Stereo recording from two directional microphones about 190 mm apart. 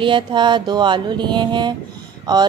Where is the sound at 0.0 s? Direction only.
25° right (ahead or behind).